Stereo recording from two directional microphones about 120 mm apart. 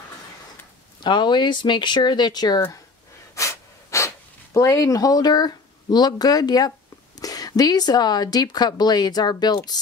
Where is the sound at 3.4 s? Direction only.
25° left (ahead or behind).